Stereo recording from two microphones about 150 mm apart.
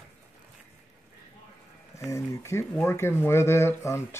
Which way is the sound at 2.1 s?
20° left (ahead or behind).